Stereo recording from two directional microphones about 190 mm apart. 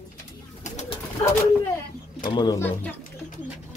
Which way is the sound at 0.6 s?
35° left (ahead or behind).